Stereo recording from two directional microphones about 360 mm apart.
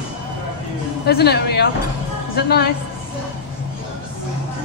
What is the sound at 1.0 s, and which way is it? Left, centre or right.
Speech, left.